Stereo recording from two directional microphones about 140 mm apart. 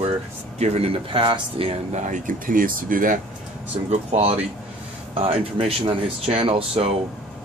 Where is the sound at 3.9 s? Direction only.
50° right (ahead or behind).